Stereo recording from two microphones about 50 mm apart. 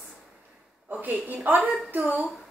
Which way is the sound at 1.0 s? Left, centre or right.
Right.